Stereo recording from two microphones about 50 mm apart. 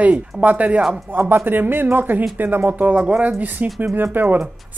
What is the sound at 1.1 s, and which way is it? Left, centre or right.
Speech, right.